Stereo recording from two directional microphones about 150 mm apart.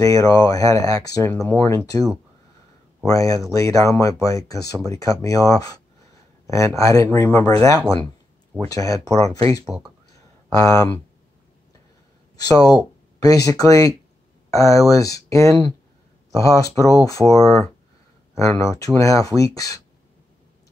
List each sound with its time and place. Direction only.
0.0 s speech: 20° left (ahead or behind)
3.1 s speech: 20° left (ahead or behind)
8.5 s speech: 20° left (ahead or behind)
9.7 s speech: 10° right (ahead or behind)
10.1 s a sound: 20° left (ahead or behind)
12.4 s speech: 25° left (ahead or behind)